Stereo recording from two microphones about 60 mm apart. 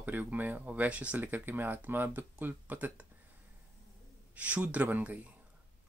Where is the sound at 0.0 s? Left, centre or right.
Right.